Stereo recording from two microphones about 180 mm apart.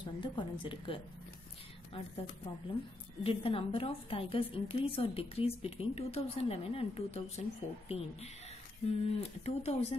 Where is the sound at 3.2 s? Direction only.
30° left (ahead or behind).